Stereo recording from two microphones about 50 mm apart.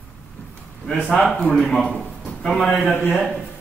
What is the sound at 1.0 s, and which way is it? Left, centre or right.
A man's voice, centre.